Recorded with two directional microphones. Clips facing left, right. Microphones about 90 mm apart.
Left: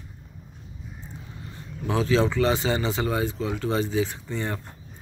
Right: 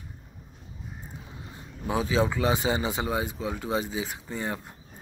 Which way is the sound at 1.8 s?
15° right (ahead or behind).